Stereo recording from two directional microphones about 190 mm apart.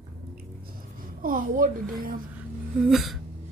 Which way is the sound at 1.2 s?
45° right (ahead or behind).